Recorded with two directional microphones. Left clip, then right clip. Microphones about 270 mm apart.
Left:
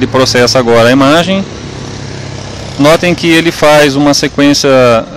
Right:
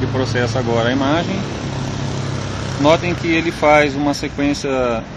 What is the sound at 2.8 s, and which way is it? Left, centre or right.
Speech, left.